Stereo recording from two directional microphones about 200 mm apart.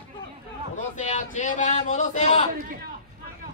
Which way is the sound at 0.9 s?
40° left (ahead or behind).